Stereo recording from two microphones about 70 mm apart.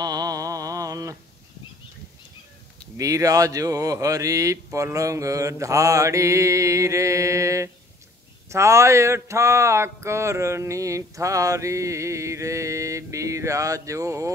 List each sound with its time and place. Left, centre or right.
0.0 s mantra: right
3.0 s speech: right